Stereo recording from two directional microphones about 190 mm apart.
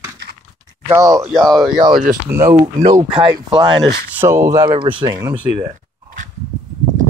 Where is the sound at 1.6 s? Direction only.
20° right (ahead or behind).